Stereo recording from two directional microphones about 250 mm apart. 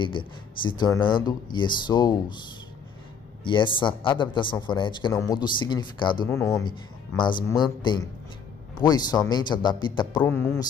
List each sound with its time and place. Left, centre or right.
0.0 s a man's voice: centre
3.4 s a man's voice: centre